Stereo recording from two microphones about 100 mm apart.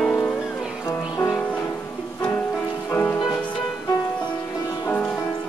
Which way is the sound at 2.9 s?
20° left (ahead or behind).